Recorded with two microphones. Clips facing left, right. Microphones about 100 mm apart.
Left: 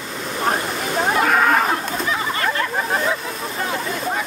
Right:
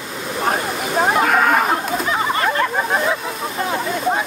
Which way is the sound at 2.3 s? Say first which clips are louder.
Right 3 dB; 30° right (ahead or behind).